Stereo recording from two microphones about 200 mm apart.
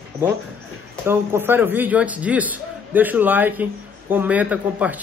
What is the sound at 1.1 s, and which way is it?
A man's voice, 10° right (ahead or behind).